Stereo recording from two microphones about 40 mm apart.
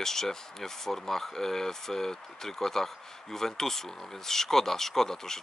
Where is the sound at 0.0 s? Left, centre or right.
Centre.